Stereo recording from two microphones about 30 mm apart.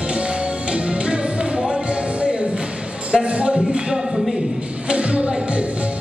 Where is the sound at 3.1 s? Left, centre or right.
Right.